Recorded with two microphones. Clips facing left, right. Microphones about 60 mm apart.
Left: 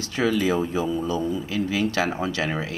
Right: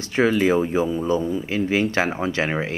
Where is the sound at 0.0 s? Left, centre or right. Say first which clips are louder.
Right 4 dB; right.